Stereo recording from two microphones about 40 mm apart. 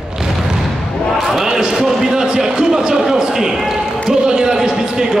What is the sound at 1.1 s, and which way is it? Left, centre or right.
Basketball bounce, centre.